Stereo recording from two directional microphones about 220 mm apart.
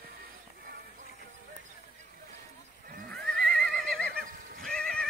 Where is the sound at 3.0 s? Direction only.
5° left (ahead or behind).